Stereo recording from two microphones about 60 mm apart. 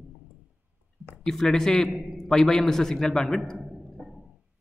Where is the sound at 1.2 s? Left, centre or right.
Centre.